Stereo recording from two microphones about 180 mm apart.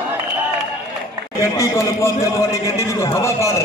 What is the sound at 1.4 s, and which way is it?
A man's voice, 15° left (ahead or behind).